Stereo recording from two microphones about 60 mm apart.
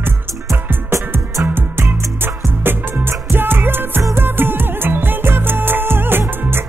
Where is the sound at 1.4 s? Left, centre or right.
Right.